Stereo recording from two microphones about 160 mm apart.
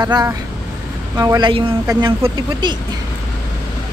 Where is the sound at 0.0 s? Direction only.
25° right (ahead or behind).